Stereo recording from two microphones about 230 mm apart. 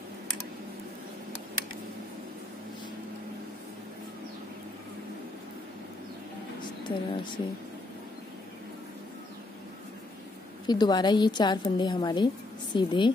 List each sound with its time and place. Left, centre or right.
6.6 s speech: centre
10.7 s a woman's voice: centre